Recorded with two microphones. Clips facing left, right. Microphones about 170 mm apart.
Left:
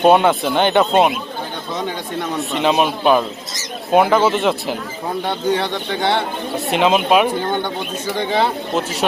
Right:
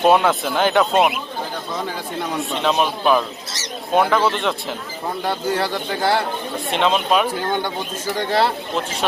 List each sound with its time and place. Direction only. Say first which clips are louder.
0.0 s speech: left 3 dB; centre (ahead or behind)
2.5 s speech: left 4 dB; 5° left (ahead or behind)